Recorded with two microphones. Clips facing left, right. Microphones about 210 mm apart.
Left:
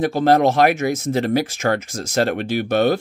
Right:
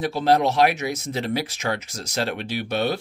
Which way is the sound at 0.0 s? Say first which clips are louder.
Left 4 dB; 50° left (ahead or behind).